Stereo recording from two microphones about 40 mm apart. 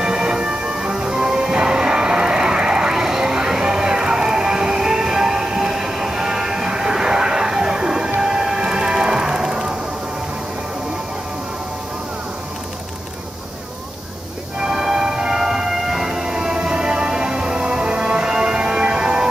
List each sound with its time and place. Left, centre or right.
0.0 s music: centre
14.6 s music: centre